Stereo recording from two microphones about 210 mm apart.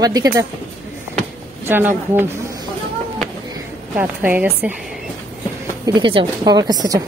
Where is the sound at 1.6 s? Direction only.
10° right (ahead or behind).